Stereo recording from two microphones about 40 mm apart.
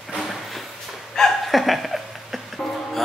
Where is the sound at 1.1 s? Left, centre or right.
Centre.